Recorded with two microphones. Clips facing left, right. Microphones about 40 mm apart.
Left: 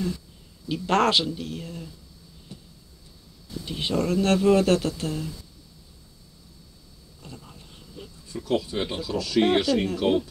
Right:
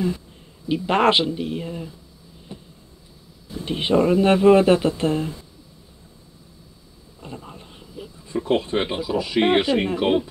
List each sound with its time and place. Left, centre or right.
0.7 s speech: centre
2.5 s vehicle: right
3.5 s speech: right
7.2 s a sound: right
8.3 s speech: right